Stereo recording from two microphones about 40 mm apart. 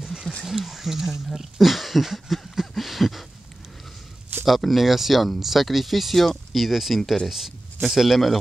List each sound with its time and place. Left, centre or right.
0.0 s a sound: centre
0.5 s speech: centre
4.5 s speech: centre